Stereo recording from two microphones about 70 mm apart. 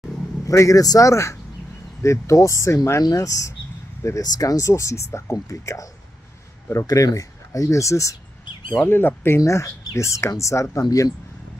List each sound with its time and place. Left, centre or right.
0.5 s speech: left
3.0 s speech: left
8.8 s speech: left
9.4 s speech: left